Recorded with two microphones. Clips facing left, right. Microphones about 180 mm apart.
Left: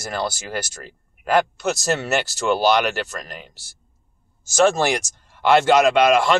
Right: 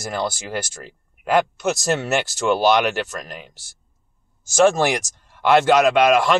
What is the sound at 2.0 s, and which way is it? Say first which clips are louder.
Speech: right 1 dB; 20° right (ahead or behind).